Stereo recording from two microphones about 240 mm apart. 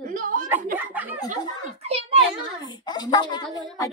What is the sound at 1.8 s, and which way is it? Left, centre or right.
Speech, right.